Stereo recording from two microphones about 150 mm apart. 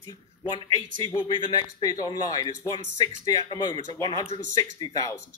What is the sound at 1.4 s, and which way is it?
Speech, 30° left (ahead or behind).